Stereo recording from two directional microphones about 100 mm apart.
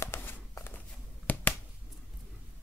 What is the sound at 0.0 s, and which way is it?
Walk, 25° left (ahead or behind).